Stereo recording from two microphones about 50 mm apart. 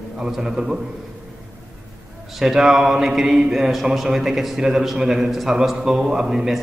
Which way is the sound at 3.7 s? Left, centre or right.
Centre.